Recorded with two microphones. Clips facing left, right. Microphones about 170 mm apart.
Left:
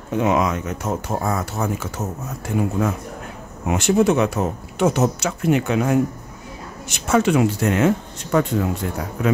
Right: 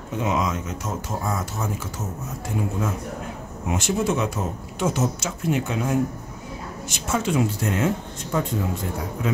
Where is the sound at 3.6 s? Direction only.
65° left (ahead or behind).